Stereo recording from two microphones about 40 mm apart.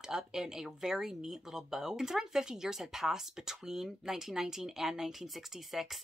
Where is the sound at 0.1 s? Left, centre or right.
Centre.